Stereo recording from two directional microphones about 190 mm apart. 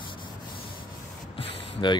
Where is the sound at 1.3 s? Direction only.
25° left (ahead or behind).